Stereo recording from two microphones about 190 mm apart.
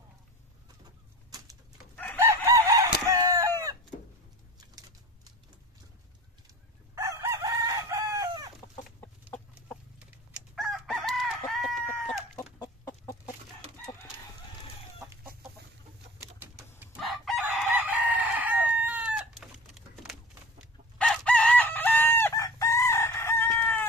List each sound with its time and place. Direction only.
2.1 s chicken: 15° right (ahead or behind)
4.6 s typing: 20° right (ahead or behind)
7.0 s chicken: 15° right (ahead or behind)
9.0 s chicken: 10° left (ahead or behind)
12.5 s chicken: 15° left (ahead or behind)
16.3 s bird: 10° right (ahead or behind)
17.0 s chicken: centre (ahead or behind)
17.5 s chicken: 10° right (ahead or behind); by 23.9 s 10° left (ahead or behind)